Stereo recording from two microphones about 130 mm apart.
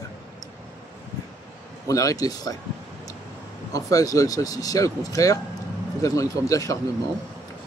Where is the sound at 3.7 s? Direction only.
25° left (ahead or behind).